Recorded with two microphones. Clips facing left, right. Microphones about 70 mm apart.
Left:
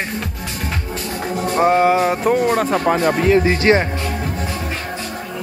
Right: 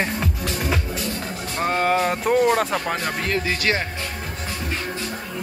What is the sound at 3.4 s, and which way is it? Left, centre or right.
Speech, left.